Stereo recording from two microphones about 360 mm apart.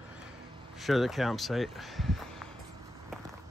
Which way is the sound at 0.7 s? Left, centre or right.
Centre.